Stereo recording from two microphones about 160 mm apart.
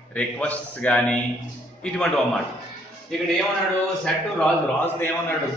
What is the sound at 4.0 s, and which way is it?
A man's voice, 10° left (ahead or behind).